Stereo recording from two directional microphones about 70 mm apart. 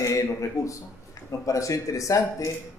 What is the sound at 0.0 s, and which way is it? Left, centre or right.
A man's voice, left.